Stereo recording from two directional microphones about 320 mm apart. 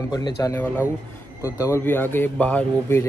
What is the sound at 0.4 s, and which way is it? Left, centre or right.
Speech, centre.